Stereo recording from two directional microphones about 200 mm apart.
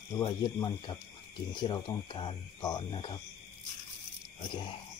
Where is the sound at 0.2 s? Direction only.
20° left (ahead or behind).